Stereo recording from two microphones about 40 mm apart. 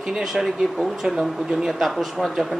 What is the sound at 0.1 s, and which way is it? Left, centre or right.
Speech, centre.